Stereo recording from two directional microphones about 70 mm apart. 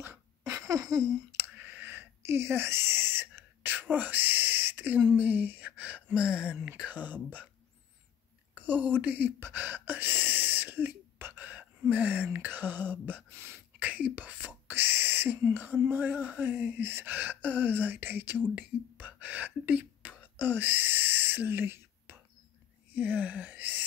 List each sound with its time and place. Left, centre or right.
0.5 s a sound: right
1.3 s a sound: right
5.1 s speech: right
8.5 s speech: right
13.3 s throat clearing: right
13.7 s whispering: right
15.5 s speech: right
22.9 s gasp: right